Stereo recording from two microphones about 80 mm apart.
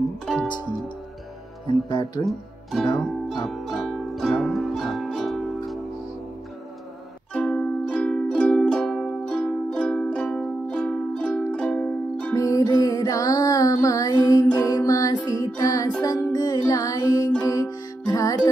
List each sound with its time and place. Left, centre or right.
1.7 s speech: left
3.4 s music: centre
7.3 s music: centre
12.4 s music: left
12.6 s music: left